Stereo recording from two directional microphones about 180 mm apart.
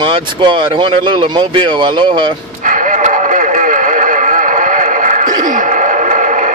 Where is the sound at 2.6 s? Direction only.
45° right (ahead or behind).